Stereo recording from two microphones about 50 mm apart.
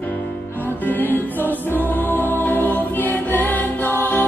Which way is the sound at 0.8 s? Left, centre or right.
Left.